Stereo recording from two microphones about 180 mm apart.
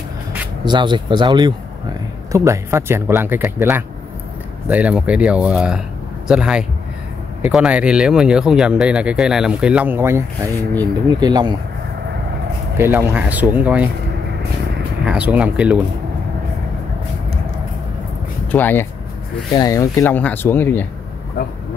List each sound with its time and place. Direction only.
0.7 s speech: 25° right (ahead or behind)
12.7 s speech: 15° right (ahead or behind)
15.0 s speech: 5° right (ahead or behind)
18.5 s speech: 10° left (ahead or behind)